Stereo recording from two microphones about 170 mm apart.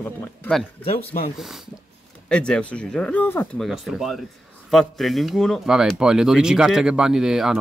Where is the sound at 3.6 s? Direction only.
Centre (ahead or behind).